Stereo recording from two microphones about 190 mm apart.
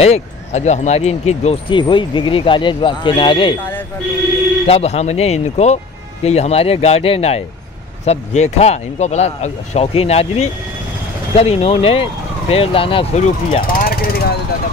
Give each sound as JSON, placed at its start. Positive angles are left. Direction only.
{"t": 0.0, "sound": "speech", "side_deg": 35}
{"t": 4.6, "sound": "speech", "side_deg": 35}